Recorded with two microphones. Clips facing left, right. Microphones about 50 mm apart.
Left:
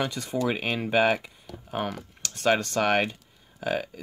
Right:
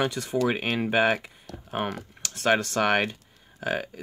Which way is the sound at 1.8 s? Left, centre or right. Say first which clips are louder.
Right 1 dB; right.